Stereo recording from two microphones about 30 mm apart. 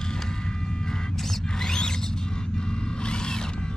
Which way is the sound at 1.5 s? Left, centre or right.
Left.